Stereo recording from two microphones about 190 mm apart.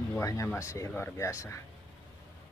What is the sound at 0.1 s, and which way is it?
Speech, 15° left (ahead or behind).